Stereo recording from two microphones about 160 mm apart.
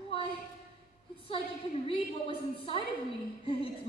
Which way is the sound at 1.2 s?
35° left (ahead or behind).